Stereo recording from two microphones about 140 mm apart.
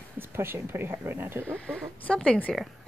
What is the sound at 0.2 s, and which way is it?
Speech, 15° right (ahead or behind).